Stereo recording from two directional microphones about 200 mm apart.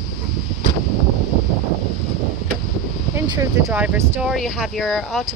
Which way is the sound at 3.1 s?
20° right (ahead or behind).